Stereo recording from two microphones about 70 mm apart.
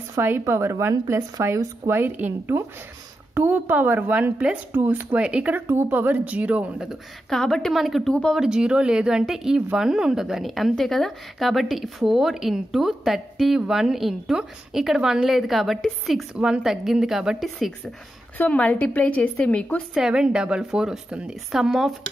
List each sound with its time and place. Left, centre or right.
0.2 s a woman's voice: right; by 5.6 s centre
5.7 s a woman's voice: right
7.2 s a woman's voice: centre
8.1 s speech: centre
8.4 s a woman's voice: centre
16.3 s a woman's voice: centre
18.4 s a woman's voice: left
19.9 s a woman's voice: centre